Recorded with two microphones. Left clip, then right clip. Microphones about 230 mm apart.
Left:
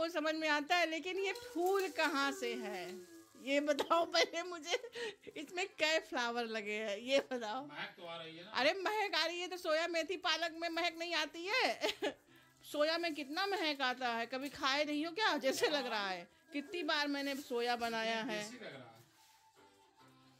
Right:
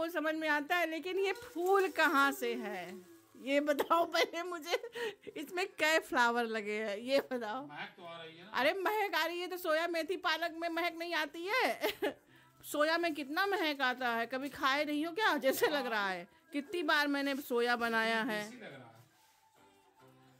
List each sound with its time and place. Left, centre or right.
0.0 s a woman's voice: centre